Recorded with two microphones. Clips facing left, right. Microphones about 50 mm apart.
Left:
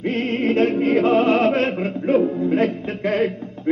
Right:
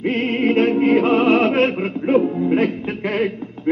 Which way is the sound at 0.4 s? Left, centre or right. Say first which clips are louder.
Right 2 dB; centre.